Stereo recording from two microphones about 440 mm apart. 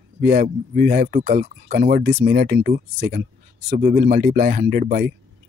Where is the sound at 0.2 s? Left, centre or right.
Centre.